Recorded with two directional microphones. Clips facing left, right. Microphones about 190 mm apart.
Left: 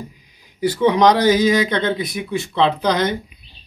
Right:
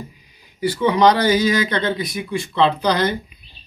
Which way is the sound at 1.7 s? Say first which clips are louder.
Left 1 dB; centre (ahead or behind).